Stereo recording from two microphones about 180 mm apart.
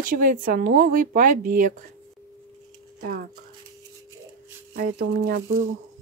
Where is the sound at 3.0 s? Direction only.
55° right (ahead or behind).